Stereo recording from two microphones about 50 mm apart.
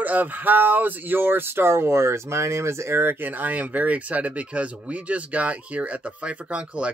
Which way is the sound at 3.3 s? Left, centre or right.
Right.